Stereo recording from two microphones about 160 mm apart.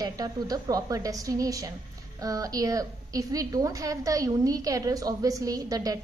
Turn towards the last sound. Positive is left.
turn(degrees=-20)  # may be behind; listen again after turning